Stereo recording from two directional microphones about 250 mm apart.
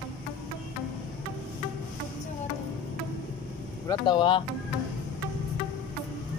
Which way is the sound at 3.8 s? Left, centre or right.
Centre.